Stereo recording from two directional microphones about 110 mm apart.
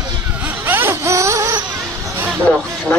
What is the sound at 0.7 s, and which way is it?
Baby cry, 20° right (ahead or behind).